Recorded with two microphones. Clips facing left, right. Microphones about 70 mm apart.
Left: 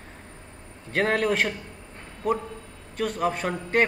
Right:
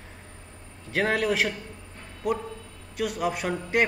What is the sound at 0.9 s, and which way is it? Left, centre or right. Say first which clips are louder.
A man's voice: left 1 dB; centre.